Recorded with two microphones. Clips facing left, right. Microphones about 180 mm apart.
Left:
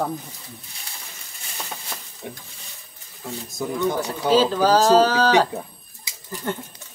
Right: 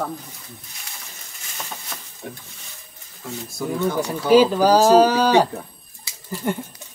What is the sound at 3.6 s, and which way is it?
Speech, 15° left (ahead or behind).